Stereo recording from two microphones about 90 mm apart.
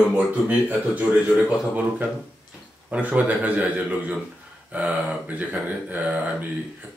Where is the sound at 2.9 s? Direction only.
15° right (ahead or behind).